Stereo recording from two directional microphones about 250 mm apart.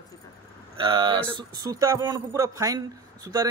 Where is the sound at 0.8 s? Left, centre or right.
Centre.